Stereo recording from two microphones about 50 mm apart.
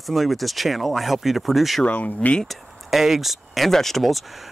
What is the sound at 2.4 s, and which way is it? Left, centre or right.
Speech, centre.